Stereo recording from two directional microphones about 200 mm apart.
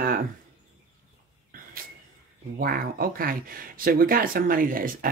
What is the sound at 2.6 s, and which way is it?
Speech, 45° right (ahead or behind).